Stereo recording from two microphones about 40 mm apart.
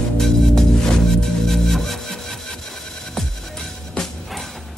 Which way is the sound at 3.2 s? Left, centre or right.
Centre.